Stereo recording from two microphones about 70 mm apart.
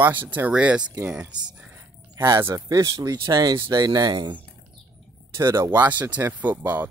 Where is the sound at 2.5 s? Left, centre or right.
Right.